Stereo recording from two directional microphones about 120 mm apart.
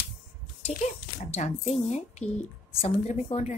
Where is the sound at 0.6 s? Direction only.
65° left (ahead or behind).